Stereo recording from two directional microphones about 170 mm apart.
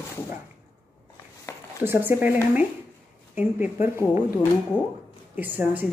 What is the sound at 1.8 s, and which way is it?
Speech, 10° right (ahead or behind).